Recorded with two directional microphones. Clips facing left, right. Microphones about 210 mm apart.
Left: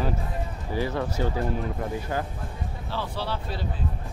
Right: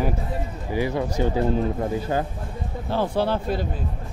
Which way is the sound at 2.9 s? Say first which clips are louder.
Right 9 dB; 50° right (ahead or behind).